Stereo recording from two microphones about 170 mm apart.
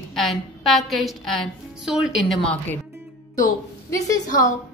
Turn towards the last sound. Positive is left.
turn(degrees=20)  # may be behind; listen again after turning